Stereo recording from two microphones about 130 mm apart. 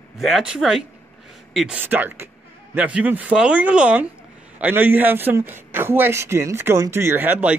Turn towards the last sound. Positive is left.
turn(degrees=-15)  # may be behind; listen again after turning